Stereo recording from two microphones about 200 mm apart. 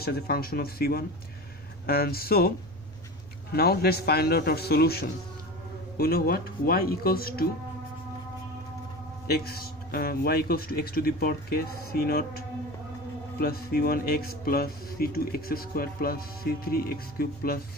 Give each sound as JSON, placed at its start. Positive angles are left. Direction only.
{"t": 0.0, "sound": "speech", "side_deg": 50}
{"t": 3.5, "sound": "speech", "side_deg": 50}
{"t": 9.3, "sound": "speech", "side_deg": 50}